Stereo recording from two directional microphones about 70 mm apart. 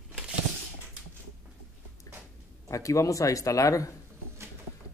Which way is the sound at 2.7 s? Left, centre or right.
Left.